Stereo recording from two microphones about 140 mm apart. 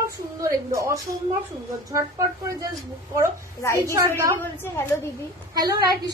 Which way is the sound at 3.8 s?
20° right (ahead or behind).